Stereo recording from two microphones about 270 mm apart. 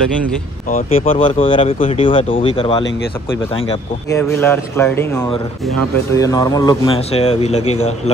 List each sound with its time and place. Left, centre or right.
0.7 s speech: left
4.2 s speech: centre; by 8.1 s left